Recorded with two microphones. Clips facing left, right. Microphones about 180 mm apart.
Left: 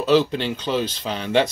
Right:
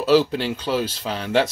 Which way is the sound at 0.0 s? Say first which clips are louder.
Right 1 dB; 5° right (ahead or behind).